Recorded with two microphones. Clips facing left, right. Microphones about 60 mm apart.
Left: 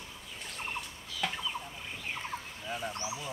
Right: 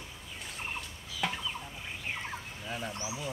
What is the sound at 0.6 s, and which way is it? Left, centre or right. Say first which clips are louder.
Fowl: left 1 dB; centre.